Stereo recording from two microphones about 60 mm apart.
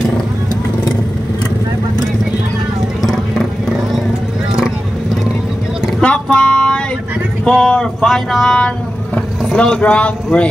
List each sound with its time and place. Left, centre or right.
3.0 s vehicle: centre
5.9 s plucked string instrument: centre
6.3 s music: centre
7.4 s speech: centre
8.5 s vehicle: centre
9.6 s speech: centre